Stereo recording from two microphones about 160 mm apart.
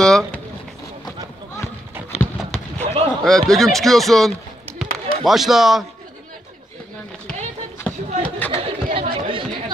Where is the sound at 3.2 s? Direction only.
5° left (ahead or behind).